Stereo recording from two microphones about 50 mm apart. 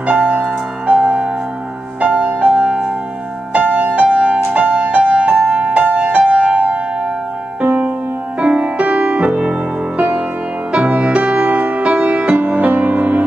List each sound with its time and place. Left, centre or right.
0.0 s music: right
5.0 s music: centre
10.7 s music: right